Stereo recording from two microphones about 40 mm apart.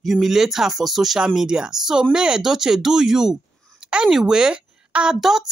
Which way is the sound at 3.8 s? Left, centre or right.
Centre.